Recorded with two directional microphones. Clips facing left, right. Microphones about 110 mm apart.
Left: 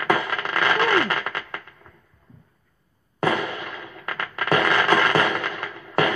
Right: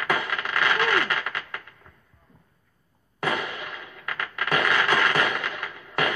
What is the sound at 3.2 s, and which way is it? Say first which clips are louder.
Fireworks: left 5 dB; 35° left (ahead or behind).